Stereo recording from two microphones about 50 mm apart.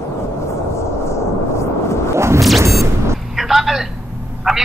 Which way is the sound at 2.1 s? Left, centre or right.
Right.